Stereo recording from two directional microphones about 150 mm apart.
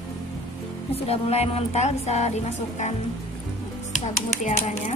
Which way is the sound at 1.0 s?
45° left (ahead or behind).